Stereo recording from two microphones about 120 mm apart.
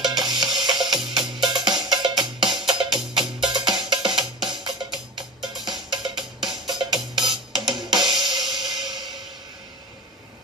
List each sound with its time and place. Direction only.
0.0 s music: 35° right (ahead or behind)
3.4 s cowbell: 35° right (ahead or behind)
5.4 s music: 35° right (ahead or behind)